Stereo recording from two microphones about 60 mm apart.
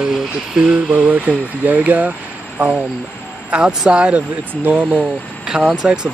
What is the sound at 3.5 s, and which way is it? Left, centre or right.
Speech, centre.